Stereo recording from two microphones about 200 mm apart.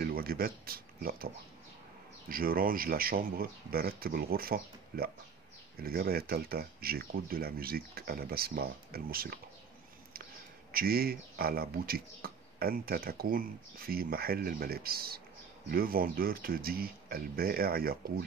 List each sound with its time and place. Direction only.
0.0 s speech: 50° right (ahead or behind)
10.7 s speech: 50° right (ahead or behind)